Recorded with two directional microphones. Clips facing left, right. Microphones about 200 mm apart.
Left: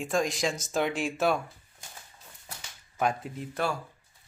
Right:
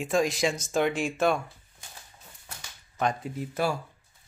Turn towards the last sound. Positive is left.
turn(degrees=-5)  # may be behind; listen again after turning